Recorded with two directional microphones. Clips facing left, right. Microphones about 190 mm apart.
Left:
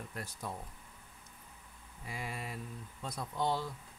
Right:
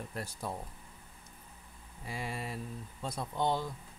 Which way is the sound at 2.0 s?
30° right (ahead or behind).